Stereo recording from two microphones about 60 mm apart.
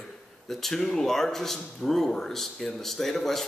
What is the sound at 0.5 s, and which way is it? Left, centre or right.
Speech, centre.